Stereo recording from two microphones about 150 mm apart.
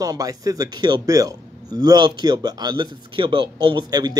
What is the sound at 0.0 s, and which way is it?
Speech, 25° right (ahead or behind).